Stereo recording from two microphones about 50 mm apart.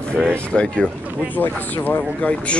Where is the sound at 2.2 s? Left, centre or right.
Left.